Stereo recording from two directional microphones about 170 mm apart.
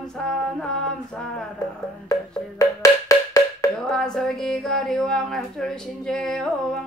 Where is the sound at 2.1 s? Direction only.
20° left (ahead or behind).